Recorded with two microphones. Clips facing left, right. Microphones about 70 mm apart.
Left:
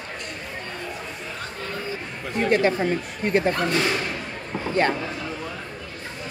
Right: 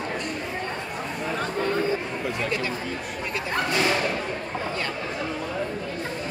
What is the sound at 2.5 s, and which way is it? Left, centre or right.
Speech, left.